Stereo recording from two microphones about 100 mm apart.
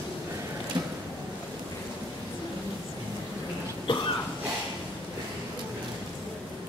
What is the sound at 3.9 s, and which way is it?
Cough, 60° left (ahead or behind).